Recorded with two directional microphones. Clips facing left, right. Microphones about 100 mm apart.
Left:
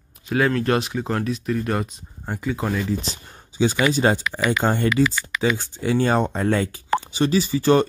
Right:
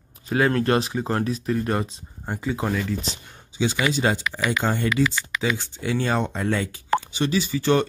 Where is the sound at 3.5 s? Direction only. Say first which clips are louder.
Left 4 dB; 45° left (ahead or behind).